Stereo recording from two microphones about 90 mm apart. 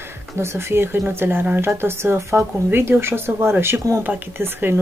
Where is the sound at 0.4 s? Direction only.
30° right (ahead or behind).